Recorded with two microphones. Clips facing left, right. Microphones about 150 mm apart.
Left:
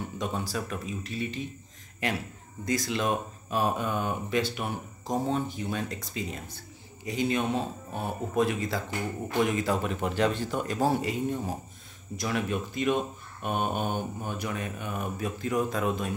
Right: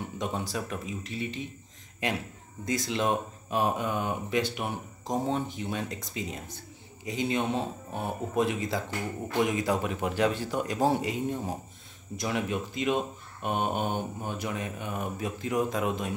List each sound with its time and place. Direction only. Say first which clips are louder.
0.2 s speech: even; 20° right (ahead or behind)
2.6 s speech: even; 20° right (ahead or behind)